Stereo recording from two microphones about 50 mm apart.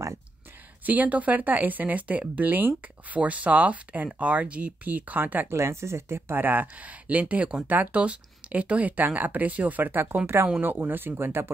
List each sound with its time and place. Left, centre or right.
0.8 s speech: right
5.5 s speech: right
10.2 s speech: right
10.6 s speech: right